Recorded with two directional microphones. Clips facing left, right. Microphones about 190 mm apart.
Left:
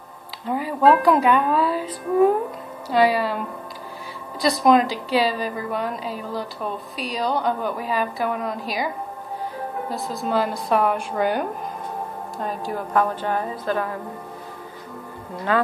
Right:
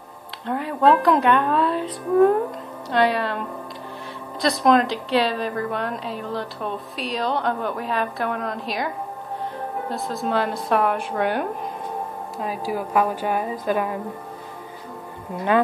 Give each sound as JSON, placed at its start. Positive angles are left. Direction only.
{"t": 0.5, "sound": "a woman's voice", "side_deg": 5}
{"t": 15.5, "sound": "speech", "side_deg": -20}